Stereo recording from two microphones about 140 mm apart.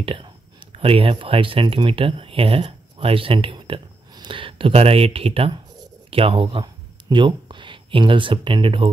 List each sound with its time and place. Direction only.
0.0 s speech: 40° right (ahead or behind)